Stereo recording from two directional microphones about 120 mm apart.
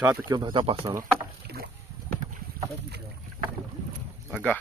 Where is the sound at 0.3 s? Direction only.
40° right (ahead or behind).